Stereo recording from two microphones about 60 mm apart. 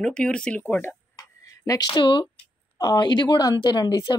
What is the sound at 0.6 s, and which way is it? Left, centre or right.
Speech, left.